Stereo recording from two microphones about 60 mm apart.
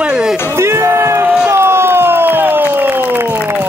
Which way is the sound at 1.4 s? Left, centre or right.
Right.